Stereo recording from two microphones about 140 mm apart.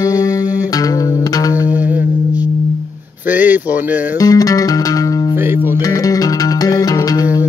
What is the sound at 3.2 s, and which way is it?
Speech, 15° right (ahead or behind).